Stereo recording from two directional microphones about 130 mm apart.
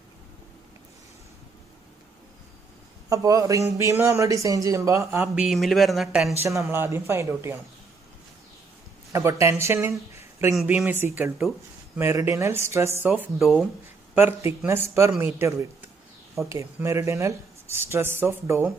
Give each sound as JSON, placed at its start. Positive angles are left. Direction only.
{"t": 3.1, "sound": "a man's voice", "side_deg": -25}
{"t": 6.4, "sound": "a man's voice", "side_deg": -20}
{"t": 9.1, "sound": "a man's voice", "side_deg": -25}
{"t": 11.1, "sound": "a man's voice", "side_deg": -10}
{"t": 13.1, "sound": "speech", "side_deg": -5}
{"t": 14.1, "sound": "a man's voice", "side_deg": -15}